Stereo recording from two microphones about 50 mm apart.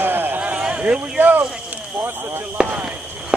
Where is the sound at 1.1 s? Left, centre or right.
Right.